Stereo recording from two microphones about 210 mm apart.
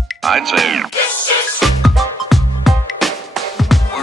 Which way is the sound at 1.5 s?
Centre (ahead or behind).